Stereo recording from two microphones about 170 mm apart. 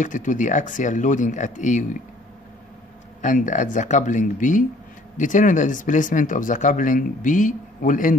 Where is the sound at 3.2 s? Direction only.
50° left (ahead or behind).